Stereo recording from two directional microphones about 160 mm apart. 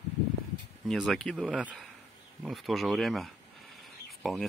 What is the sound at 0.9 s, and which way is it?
Speech, centre (ahead or behind).